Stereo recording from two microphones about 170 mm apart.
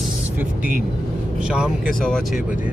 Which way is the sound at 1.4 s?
5° right (ahead or behind).